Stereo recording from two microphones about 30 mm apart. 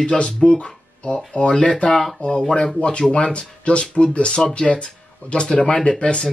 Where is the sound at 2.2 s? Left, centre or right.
Left.